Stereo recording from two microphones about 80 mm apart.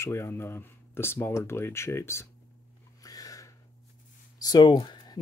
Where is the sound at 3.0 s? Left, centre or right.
Left.